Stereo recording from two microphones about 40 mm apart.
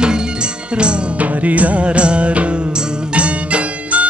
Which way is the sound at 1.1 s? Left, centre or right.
Right.